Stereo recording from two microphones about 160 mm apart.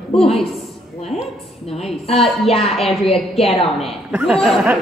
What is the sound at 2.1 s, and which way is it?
Speech, 40° left (ahead or behind).